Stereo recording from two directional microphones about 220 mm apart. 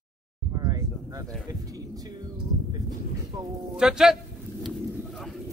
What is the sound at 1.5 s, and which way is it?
Speech, 15° right (ahead or behind).